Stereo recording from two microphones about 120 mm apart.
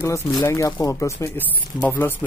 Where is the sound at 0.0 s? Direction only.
25° left (ahead or behind).